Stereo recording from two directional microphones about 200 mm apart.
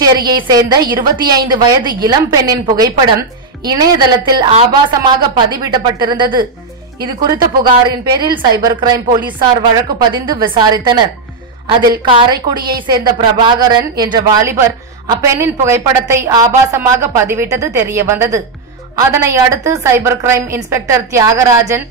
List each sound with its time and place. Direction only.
0.0 s speech: 20° right (ahead or behind)
12.0 s a woman's voice: 20° right (ahead or behind)